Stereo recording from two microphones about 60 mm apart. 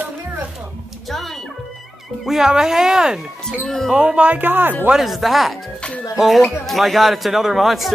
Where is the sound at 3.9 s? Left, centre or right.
Centre.